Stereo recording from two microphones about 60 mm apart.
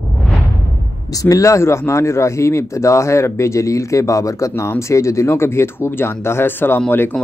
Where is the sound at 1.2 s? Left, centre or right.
Left.